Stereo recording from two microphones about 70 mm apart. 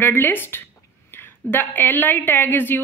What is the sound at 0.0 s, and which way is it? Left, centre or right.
A woman's voice, left.